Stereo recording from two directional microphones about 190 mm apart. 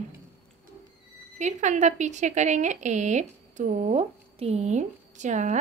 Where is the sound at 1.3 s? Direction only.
40° right (ahead or behind).